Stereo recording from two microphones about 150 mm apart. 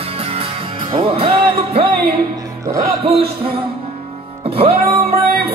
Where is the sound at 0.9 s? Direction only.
35° right (ahead or behind).